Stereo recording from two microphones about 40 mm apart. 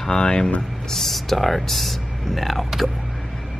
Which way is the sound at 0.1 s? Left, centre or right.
Left.